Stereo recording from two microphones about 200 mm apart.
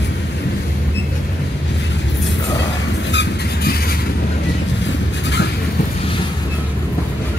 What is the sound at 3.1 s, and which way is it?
Vehicle, 50° left (ahead or behind).